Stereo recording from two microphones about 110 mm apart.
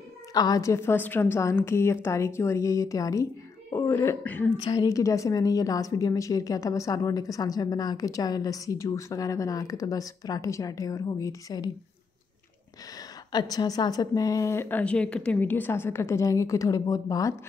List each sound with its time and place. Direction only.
0.3 s a woman's voice: 35° left (ahead or behind); by 4.5 s 20° left (ahead or behind)
4.6 s a woman's voice: 30° left (ahead or behind)
13.3 s a woman's voice: 40° left (ahead or behind)